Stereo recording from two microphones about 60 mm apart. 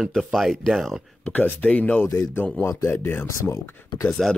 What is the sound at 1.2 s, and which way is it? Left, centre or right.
Speech, left.